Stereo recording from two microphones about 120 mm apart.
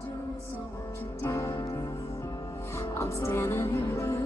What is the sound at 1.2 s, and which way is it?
Music, 25° left (ahead or behind).